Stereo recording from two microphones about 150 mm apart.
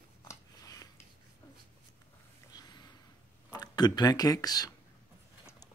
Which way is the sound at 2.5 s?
25° left (ahead or behind).